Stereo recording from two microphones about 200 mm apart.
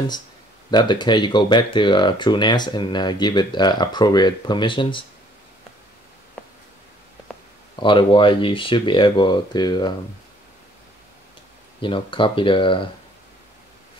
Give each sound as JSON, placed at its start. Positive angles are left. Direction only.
{"t": 0.7, "sound": "speech", "side_deg": 20}
{"t": 7.8, "sound": "speech", "side_deg": 25}
{"t": 11.8, "sound": "speech", "side_deg": 25}